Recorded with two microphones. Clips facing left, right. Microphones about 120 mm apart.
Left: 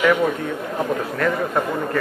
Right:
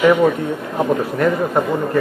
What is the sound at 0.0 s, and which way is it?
Speech, 20° right (ahead or behind).